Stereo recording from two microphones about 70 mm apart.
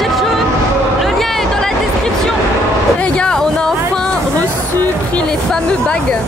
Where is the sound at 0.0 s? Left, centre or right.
Centre.